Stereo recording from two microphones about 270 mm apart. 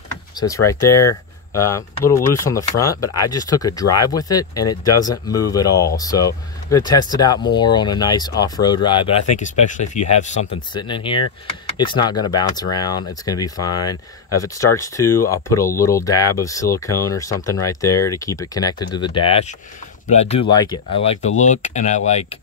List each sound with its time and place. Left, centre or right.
0.4 s speech: centre